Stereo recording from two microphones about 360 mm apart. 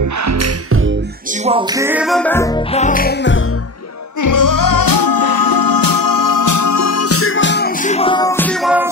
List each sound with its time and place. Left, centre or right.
0.0 s music: right
1.4 s music: centre; by 3.4 s left
4.2 s music: left; by 8.9 s centre